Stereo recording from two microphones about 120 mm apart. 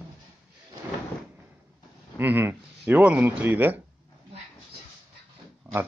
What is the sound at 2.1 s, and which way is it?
Speech, 20° right (ahead or behind).